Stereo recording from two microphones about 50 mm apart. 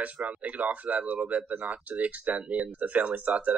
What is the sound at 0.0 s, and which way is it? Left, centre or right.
Speech, right.